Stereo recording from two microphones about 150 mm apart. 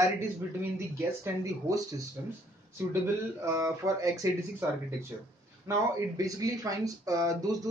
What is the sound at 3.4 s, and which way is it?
Speech, 20° right (ahead or behind).